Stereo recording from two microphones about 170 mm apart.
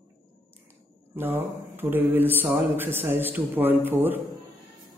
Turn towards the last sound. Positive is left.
turn(degrees=-10)  # may be behind; listen again after turning